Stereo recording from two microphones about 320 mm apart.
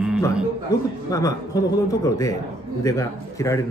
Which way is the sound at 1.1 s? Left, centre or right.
Centre.